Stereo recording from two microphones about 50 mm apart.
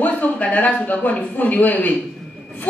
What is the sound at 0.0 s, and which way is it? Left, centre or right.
A man's voice, left.